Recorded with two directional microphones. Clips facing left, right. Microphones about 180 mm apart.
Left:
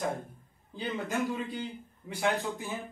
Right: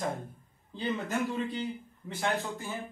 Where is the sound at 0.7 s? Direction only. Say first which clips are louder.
Right 1 dB; 10° left (ahead or behind).